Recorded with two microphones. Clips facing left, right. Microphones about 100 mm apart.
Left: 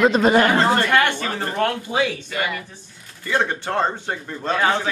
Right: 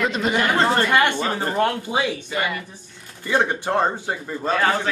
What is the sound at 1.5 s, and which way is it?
A man's voice, 10° right (ahead or behind).